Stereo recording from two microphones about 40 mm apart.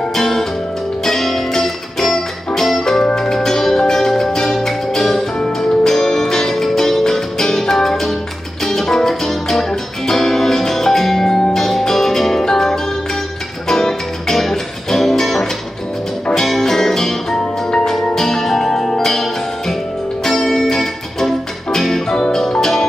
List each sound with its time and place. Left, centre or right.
0.1 s music: centre
16.4 s music: centre
17.6 s music: centre
18.1 s music: centre
20.2 s music: centre